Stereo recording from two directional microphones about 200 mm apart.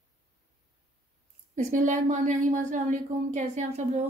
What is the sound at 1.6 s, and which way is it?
A woman's voice, 40° right (ahead or behind).